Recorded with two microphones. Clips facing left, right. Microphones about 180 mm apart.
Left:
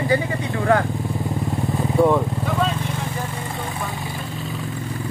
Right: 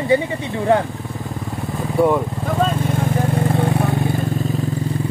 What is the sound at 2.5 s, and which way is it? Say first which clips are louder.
Vehicle: right 4 dB; 45° right (ahead or behind).